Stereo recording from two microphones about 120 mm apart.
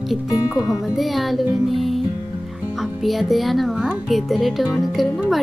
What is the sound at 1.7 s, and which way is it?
Music, centre (ahead or behind).